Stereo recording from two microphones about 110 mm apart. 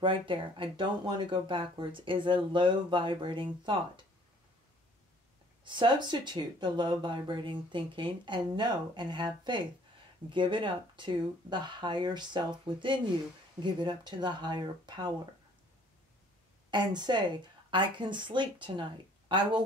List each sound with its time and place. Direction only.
0.0 s speech: 50° right (ahead or behind)
5.6 s speech: 45° right (ahead or behind)
16.7 s speech: 40° right (ahead or behind)